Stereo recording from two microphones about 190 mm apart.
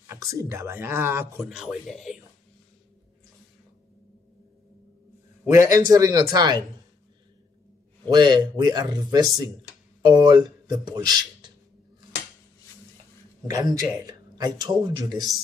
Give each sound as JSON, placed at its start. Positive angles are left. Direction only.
{"t": 0.0, "sound": "speech", "side_deg": -15}
{"t": 5.5, "sound": "speech", "side_deg": -15}
{"t": 8.1, "sound": "speech", "side_deg": -25}
{"t": 13.5, "sound": "speech", "side_deg": -20}